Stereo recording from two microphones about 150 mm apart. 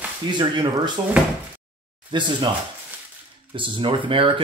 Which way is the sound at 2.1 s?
30° right (ahead or behind).